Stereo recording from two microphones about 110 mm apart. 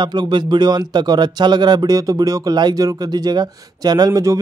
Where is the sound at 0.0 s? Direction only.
45° right (ahead or behind).